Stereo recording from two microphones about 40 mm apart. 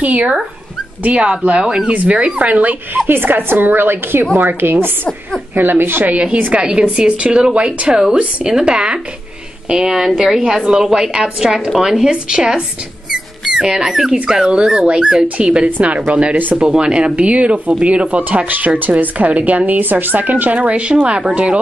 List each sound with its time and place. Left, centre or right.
0.0 s speech: right
1.1 s a woman's voice: right
1.9 s speech: right
2.1 s a woman's voice: right
2.4 s speech: right
3.1 s a woman's voice: right
6.5 s a woman's voice: right
13.1 s rodents: centre
14.2 s a woman's voice: centre
17.1 s speech: right
20.5 s speech: right